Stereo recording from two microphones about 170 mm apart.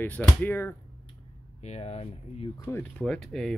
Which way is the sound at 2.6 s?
10° left (ahead or behind).